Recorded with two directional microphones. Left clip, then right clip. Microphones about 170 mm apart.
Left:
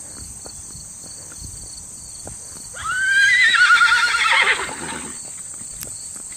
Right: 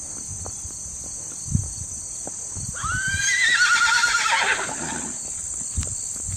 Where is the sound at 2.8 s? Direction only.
55° right (ahead or behind).